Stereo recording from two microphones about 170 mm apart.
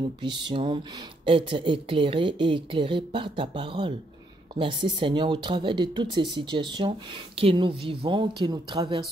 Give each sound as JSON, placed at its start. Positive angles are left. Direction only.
{"t": 0.2, "sound": "speech", "side_deg": -30}